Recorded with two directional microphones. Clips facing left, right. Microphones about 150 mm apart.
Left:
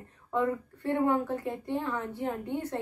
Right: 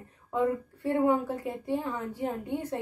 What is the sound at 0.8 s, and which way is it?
Speech, 10° right (ahead or behind).